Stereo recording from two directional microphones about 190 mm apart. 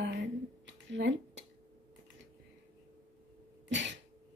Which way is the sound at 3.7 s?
70° right (ahead or behind).